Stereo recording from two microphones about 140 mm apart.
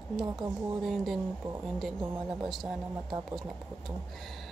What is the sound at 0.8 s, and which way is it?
Speech, centre (ahead or behind).